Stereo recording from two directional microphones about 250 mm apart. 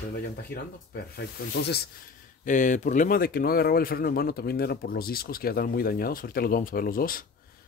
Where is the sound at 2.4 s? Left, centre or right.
Left.